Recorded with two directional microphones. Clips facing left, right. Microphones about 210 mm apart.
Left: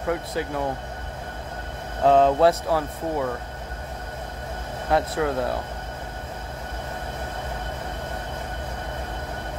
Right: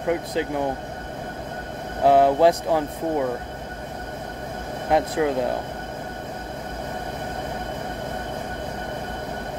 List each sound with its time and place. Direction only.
0.0 s speech: 20° right (ahead or behind)
2.0 s speech: 15° right (ahead or behind)
4.8 s speech: 15° right (ahead or behind)